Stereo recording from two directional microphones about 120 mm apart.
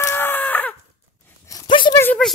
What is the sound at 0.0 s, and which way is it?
Chicken, 20° left (ahead or behind).